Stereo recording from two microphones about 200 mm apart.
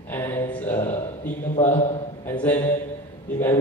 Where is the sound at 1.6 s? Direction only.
30° left (ahead or behind).